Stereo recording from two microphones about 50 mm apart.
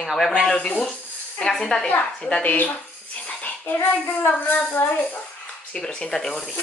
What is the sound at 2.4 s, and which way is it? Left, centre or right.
Speech, left.